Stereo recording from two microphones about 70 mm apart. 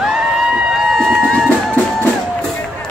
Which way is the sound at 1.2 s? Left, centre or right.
Centre.